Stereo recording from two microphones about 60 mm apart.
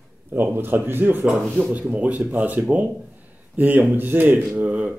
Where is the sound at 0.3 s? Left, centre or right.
Right.